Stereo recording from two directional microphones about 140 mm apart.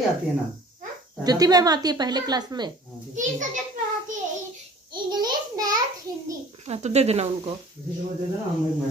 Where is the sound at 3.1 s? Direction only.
65° right (ahead or behind).